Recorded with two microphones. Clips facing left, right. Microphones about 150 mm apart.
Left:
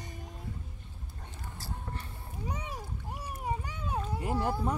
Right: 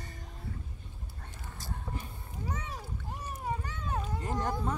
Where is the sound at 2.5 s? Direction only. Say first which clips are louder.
Left 1 dB; 10° left (ahead or behind).